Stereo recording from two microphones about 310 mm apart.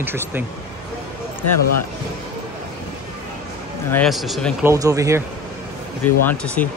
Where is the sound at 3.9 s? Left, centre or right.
Centre.